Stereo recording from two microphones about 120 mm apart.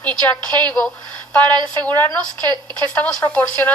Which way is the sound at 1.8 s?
15° left (ahead or behind).